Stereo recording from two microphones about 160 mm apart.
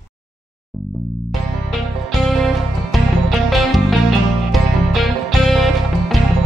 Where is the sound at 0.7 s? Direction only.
Centre (ahead or behind).